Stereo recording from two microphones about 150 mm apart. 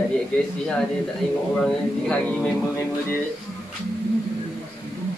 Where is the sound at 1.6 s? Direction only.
5° left (ahead or behind).